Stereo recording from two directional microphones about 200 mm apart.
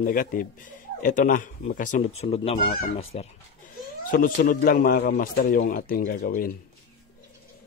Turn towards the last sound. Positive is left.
turn(degrees=45)  # may be behind; listen again after turning